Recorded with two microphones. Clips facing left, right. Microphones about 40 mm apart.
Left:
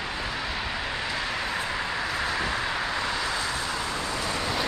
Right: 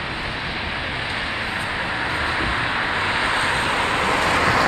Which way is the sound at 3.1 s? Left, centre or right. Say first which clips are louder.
Right 8 dB; right.